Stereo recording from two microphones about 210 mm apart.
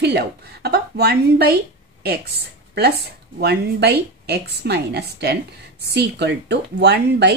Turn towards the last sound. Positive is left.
turn(degrees=-55)  # may be behind; listen again after turning